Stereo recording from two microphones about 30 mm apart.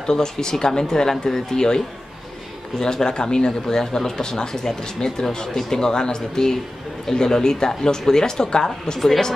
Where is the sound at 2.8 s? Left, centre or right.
Left.